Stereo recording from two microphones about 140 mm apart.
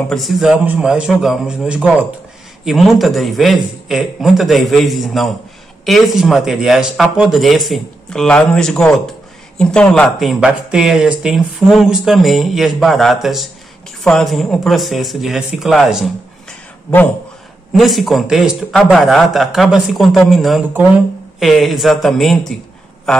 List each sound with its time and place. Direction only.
0.1 s speech: centre (ahead or behind)
17.7 s speech: centre (ahead or behind)